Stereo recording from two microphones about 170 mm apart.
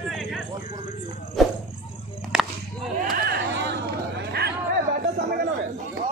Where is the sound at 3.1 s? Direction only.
70° right (ahead or behind).